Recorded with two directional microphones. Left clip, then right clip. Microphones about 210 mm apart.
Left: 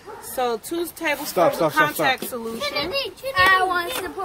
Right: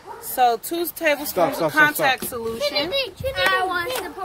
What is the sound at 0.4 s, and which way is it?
Speech, 45° right (ahead or behind).